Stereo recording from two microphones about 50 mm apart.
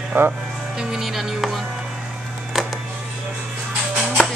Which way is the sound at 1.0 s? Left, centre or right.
Centre.